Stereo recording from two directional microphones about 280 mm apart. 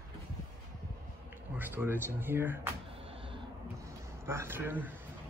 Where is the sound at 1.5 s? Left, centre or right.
Centre.